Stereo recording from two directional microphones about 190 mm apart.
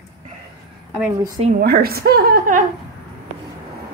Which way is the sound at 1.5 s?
55° right (ahead or behind).